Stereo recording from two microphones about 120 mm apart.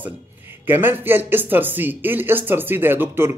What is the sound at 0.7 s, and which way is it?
Speech, 15° right (ahead or behind).